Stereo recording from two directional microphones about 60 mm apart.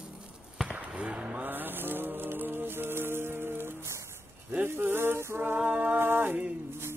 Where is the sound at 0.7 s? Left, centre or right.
Right.